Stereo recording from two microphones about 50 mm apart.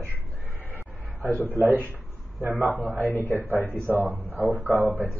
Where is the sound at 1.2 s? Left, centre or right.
Right.